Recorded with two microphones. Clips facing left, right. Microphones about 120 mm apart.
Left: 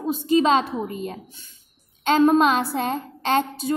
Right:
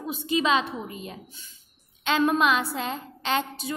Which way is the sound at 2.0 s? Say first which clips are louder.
Left 6 dB; 35° left (ahead or behind).